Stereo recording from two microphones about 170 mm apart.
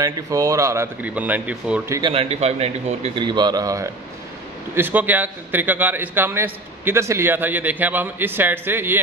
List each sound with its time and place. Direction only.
0.0 s a man's voice: 20° right (ahead or behind)
1.9 s a man's voice: 25° right (ahead or behind)
3.3 s a man's voice: 25° right (ahead or behind)